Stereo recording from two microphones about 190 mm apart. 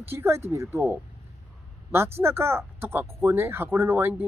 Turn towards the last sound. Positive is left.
turn(degrees=-10)  # may be behind; listen again after turning